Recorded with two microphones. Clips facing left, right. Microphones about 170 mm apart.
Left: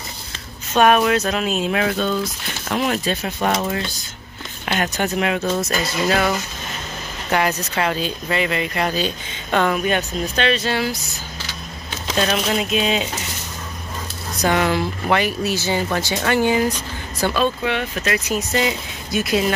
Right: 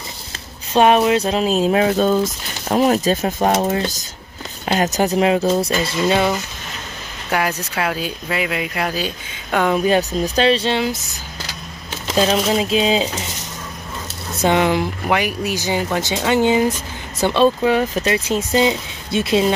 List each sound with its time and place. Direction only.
0.7 s speech: 25° right (ahead or behind)
7.2 s speech: 5° right (ahead or behind)
9.8 s speech: 35° right (ahead or behind)
12.2 s speech: 30° right (ahead or behind)
14.3 s speech: 25° right (ahead or behind)